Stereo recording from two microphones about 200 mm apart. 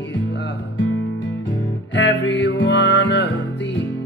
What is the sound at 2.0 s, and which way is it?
Music, 65° left (ahead or behind).